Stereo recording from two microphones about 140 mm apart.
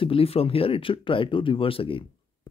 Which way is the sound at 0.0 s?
40° left (ahead or behind).